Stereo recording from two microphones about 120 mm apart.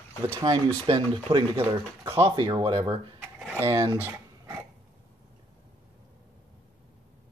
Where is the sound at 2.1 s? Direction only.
20° right (ahead or behind).